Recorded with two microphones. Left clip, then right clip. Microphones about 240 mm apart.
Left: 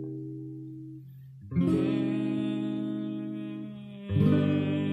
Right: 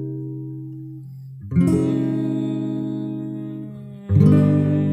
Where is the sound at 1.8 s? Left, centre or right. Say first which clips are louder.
Right 7 dB; right.